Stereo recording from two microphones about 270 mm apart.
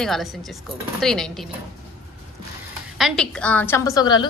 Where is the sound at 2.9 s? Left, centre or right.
Centre.